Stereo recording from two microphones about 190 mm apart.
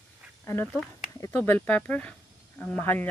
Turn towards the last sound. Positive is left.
turn(degrees=10)  # may be behind; listen again after turning